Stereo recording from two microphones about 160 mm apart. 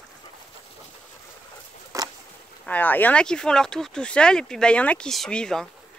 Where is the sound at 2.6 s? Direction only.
10° left (ahead or behind).